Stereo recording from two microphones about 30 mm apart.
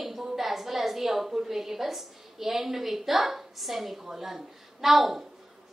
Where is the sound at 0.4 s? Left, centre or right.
Centre.